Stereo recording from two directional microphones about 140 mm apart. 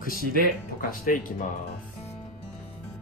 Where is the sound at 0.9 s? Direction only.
85° left.